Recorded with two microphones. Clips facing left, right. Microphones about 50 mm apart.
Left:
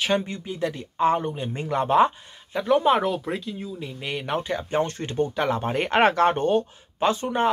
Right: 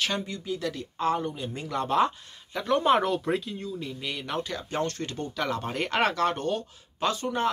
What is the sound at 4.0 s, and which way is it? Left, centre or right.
Speech, left.